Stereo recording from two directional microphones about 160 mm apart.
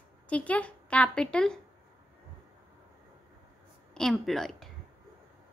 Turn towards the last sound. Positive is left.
turn(degrees=0)  # may be behind; listen again after turning